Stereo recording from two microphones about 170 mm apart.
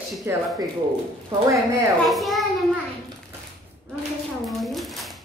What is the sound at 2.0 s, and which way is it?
Speech, centre (ahead or behind).